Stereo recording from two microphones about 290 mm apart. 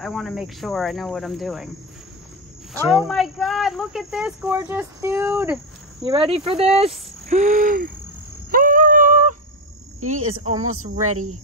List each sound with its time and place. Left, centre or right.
0.0 s speech: centre
2.8 s speech: centre
6.0 s speech: centre
8.5 s a sound: right
9.9 s speech: right